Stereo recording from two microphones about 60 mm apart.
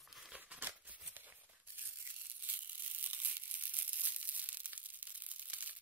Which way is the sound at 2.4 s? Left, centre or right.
Right.